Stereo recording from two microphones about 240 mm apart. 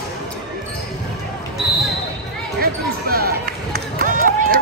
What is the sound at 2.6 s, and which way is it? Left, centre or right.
Run, right.